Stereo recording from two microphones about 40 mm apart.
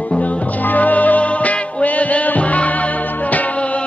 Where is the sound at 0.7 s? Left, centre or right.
Left.